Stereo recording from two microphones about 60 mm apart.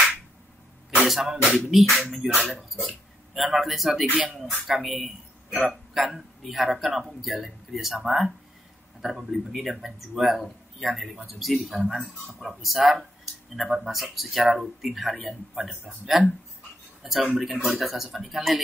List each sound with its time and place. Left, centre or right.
1.0 s speech: centre
4.1 s speech: right
4.4 s a man's voice: centre
17.0 s speech: centre